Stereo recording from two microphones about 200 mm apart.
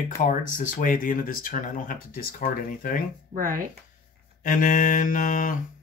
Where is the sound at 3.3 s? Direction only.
45° right (ahead or behind).